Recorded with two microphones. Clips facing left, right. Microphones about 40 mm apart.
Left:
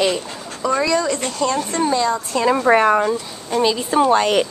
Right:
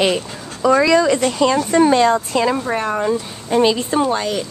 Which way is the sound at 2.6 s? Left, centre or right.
Left.